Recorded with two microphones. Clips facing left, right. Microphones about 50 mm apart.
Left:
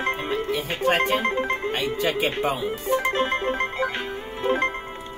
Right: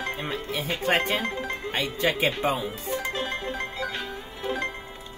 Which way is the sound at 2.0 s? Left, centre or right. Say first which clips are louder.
Right 1 dB; right.